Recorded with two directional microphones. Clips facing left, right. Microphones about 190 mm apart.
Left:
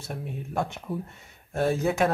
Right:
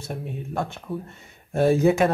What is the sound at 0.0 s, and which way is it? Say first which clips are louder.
Speech: right 3 dB; centre (ahead or behind).